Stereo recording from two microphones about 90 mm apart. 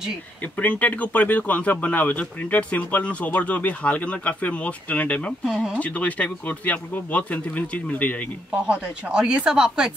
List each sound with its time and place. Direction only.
0.6 s speech: 15° left (ahead or behind)
5.4 s speech: centre (ahead or behind)
5.8 s speech: 15° left (ahead or behind)
8.6 s speech: 10° right (ahead or behind)